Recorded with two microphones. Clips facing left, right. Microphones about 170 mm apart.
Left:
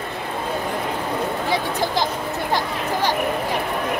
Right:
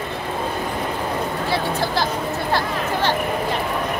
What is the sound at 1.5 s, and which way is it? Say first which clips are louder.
Speech: right 2 dB; 15° left (ahead or behind).